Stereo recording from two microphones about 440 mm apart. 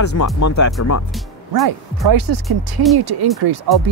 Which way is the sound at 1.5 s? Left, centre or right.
Right.